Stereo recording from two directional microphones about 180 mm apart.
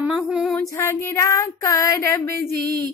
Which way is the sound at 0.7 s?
15° left (ahead or behind).